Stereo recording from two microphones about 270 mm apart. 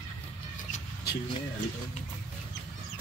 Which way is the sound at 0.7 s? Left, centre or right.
Left.